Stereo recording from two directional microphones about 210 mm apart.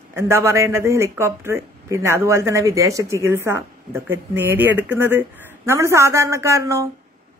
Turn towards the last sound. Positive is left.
turn(degrees=-15)  # may be behind; listen again after turning